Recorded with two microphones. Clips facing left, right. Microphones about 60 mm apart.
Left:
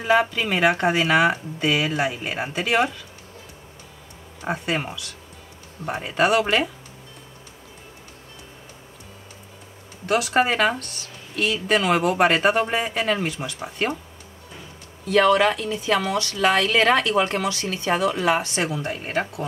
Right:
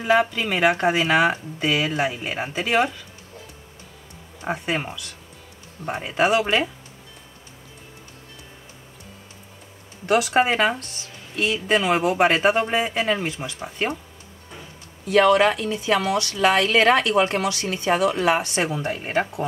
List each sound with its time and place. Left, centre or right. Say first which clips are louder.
0.0 s speech: even; centre
4.4 s speech: even; centre
10.0 s speech: right 1 dB; centre
15.0 s speech: right 1 dB; centre